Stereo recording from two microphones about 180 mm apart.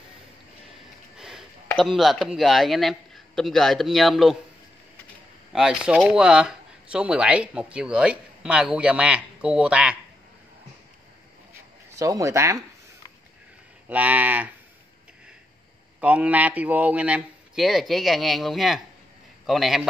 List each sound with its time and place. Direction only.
1.1 s a sound: 5° right (ahead or behind)
1.7 s speech: centre (ahead or behind)
5.5 s speech: 5° right (ahead or behind)
11.9 s speech: 20° right (ahead or behind)
13.8 s speech: 10° right (ahead or behind)
16.0 s speech: 5° right (ahead or behind)